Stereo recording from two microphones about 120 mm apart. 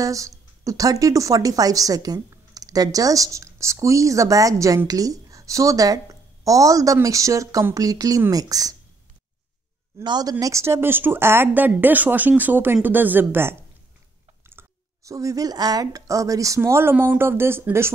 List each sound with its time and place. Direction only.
0.0 s speech: 25° right (ahead or behind)
10.0 s speech: 35° right (ahead or behind)
10.4 s speech: 25° right (ahead or behind)